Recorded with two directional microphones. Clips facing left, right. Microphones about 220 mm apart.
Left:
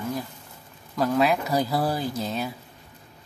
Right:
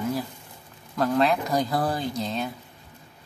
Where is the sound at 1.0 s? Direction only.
5° left (ahead or behind).